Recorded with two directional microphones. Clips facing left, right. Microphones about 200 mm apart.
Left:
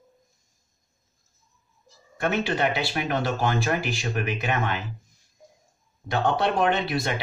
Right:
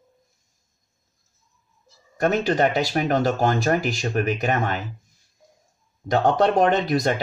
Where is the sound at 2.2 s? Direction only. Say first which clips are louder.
Right 5 dB; 40° right (ahead or behind).